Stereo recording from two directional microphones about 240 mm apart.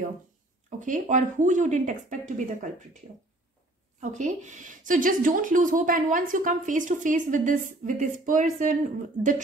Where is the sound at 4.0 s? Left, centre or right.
Right.